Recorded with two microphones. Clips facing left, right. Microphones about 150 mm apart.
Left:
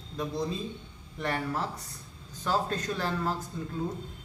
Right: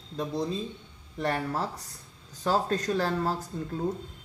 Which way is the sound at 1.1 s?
35° right (ahead or behind).